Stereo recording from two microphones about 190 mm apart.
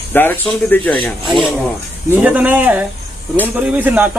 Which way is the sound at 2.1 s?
5° right (ahead or behind).